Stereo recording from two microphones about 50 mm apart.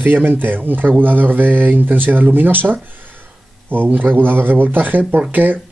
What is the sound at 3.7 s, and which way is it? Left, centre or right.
Speech, right.